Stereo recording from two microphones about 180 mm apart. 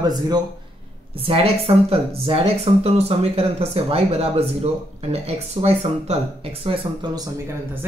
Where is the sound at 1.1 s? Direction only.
30° right (ahead or behind).